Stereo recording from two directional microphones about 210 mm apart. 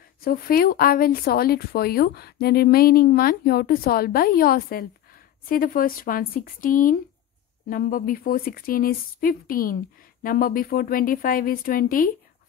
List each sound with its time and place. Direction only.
0.2 s speech: 45° left (ahead or behind)